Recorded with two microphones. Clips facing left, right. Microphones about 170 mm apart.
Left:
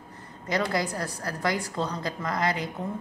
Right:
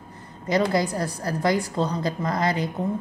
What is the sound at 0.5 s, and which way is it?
A woman's voice, 30° right (ahead or behind).